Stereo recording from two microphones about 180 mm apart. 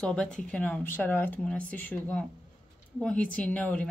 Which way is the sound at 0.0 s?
5° left (ahead or behind).